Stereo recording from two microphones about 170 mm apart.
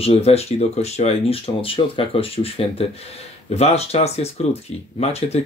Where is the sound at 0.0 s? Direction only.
35° left (ahead or behind).